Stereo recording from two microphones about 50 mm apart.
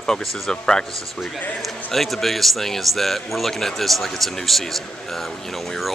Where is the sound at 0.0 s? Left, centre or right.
Centre.